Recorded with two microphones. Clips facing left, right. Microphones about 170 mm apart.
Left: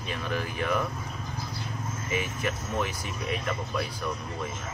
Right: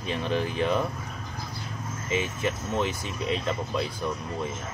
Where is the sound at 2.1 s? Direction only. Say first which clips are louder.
Right 3 dB; 25° right (ahead or behind).